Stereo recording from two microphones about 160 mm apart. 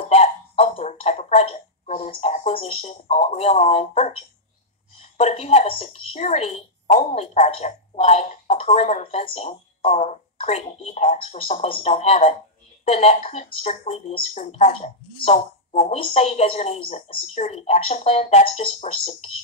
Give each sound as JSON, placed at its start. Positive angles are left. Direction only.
{"t": 0.1, "sound": "a woman's voice", "side_deg": 40}